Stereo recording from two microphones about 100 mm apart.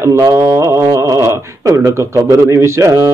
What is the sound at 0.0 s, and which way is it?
Speech, 30° right (ahead or behind).